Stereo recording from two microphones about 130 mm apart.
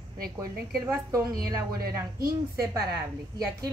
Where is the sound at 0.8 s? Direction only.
20° right (ahead or behind).